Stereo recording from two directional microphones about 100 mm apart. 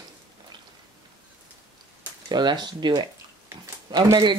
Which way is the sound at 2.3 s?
45° right (ahead or behind).